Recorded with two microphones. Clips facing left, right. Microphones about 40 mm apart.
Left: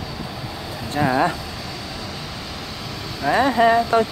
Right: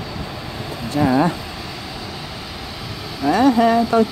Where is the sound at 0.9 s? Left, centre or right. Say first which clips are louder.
Right 2 dB; left.